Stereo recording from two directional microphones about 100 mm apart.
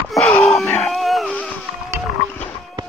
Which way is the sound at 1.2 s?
10° left (ahead or behind).